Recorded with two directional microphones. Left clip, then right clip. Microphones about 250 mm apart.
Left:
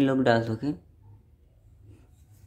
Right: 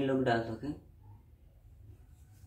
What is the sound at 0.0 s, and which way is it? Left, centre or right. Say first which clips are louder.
Speech: left 8 dB; left.